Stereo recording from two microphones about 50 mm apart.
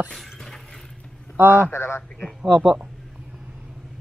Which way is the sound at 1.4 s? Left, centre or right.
Right.